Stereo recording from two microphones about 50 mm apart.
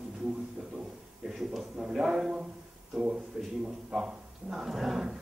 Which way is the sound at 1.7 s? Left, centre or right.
Centre.